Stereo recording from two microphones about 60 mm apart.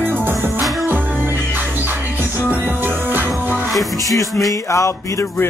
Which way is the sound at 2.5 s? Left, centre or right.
Right.